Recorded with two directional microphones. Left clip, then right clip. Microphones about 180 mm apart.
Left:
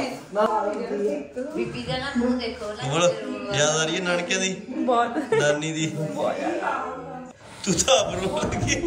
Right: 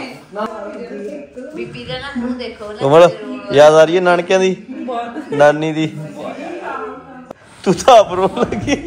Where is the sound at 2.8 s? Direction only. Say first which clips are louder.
Right 14 dB; 20° right (ahead or behind).